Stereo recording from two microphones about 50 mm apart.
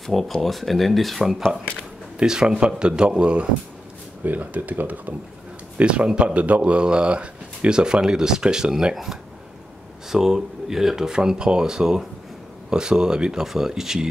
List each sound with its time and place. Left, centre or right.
0.0 s speech: centre
2.1 s speech: centre
4.2 s speech: right
5.8 s speech: right
8.9 s speech: centre